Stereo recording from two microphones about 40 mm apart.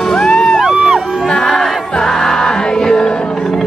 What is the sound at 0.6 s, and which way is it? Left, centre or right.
Music, centre.